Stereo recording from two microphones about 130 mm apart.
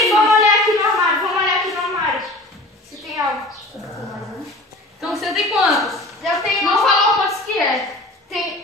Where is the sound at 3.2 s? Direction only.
25° right (ahead or behind).